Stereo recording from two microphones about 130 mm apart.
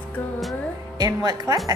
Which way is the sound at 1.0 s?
30° right (ahead or behind).